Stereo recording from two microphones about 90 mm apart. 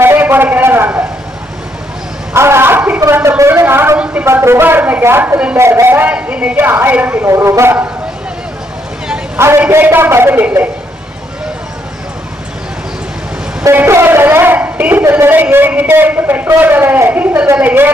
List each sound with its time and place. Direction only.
0.0 s a sound: 25° right (ahead or behind)
2.3 s a sound: 30° right (ahead or behind)
3.0 s a man's voice: 30° right (ahead or behind)
7.2 s speech: 30° right (ahead or behind)
9.6 s a man's voice: 25° right (ahead or behind)
13.7 s a man's voice: 30° right (ahead or behind)